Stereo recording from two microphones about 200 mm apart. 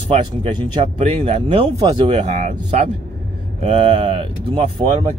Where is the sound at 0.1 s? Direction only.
25° right (ahead or behind).